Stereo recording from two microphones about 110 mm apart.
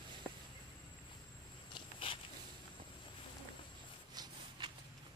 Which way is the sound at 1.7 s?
55° left (ahead or behind).